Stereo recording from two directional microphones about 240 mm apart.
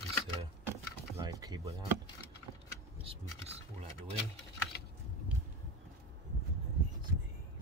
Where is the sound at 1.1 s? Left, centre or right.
Centre.